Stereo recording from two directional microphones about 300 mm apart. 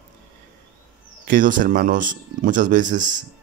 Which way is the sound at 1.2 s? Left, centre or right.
Right.